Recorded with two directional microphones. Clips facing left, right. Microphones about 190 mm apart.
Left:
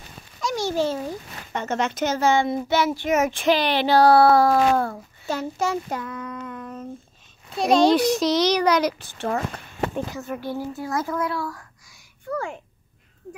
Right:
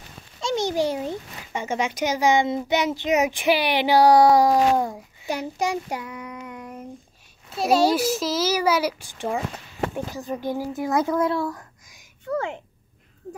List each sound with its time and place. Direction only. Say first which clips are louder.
0.4 s speech: right 1 dB; 25° right (ahead or behind)